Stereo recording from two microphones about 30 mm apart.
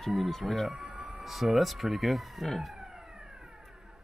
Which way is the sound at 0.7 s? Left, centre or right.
Centre.